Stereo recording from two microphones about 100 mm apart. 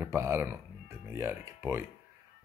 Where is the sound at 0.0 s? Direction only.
25° right (ahead or behind).